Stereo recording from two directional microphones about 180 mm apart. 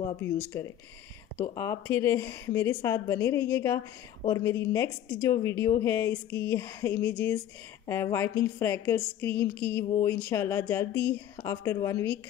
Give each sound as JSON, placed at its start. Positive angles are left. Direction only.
{"t": 0.2, "sound": "speech", "side_deg": 15}